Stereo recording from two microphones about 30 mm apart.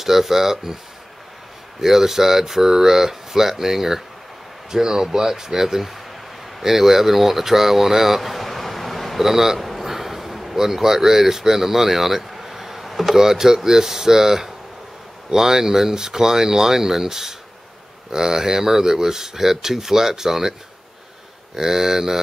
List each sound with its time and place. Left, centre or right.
0.0 s speech: centre
1.8 s speech: centre
8.2 s a sound: centre
9.2 s speech: centre
9.6 s speech: centre
21.5 s speech: centre